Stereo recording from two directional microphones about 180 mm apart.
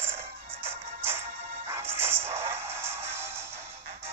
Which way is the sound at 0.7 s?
10° right (ahead or behind).